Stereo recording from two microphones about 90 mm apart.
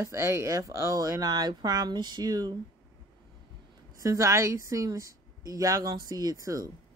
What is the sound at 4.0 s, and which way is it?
Speech, 40° right (ahead or behind).